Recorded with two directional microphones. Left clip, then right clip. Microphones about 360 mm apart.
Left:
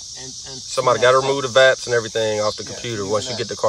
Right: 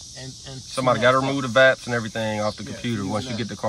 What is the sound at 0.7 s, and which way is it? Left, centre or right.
Speech, centre.